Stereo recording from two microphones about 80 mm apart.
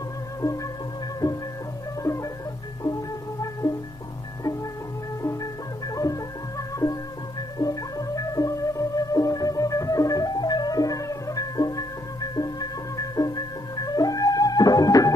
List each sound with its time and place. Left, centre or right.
1.2 s music: left
5.2 s music: left
6.8 s music: left
7.5 s music: left